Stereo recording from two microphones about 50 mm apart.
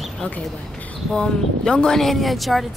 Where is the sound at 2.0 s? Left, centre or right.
Centre.